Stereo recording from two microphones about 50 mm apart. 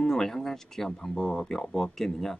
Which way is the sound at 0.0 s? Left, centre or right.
Centre.